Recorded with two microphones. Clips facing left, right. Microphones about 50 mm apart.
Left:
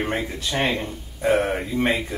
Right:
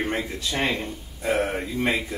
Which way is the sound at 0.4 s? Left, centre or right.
Left.